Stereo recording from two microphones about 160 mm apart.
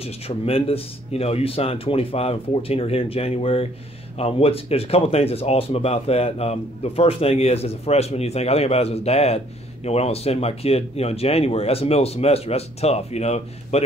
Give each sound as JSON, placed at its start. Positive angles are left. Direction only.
{"t": 0.0, "sound": "speech", "side_deg": 35}